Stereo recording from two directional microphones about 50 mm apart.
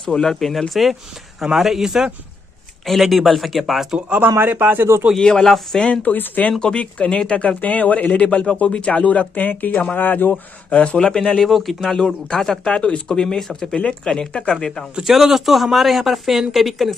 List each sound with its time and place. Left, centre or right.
0.1 s a man's voice: centre
2.8 s speech: centre
4.1 s speech: right
5.2 s speech: centre
6.0 s speech: left
6.6 s speech: left
10.3 s speech: left
11.4 s speech: centre
15.0 s speech: centre